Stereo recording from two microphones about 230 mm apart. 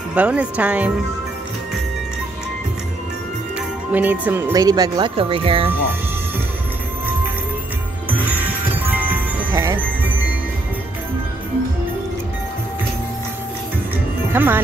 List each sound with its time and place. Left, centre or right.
0.1 s speech: centre
3.9 s speech: centre; by 5.7 s right
8.8 s wind chime: centre
14.3 s speech: centre